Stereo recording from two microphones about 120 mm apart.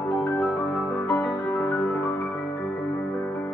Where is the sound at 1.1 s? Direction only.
15° left (ahead or behind).